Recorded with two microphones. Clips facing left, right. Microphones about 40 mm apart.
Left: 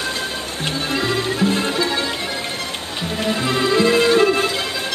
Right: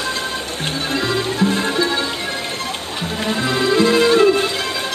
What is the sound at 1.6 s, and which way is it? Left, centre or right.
Music, right.